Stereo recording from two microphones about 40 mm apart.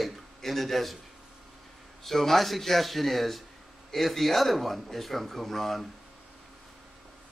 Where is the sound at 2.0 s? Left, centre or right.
Centre.